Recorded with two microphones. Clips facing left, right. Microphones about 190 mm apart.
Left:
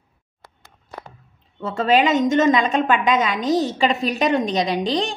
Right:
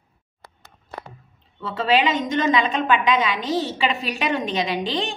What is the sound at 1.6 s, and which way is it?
A woman's voice, 45° left (ahead or behind).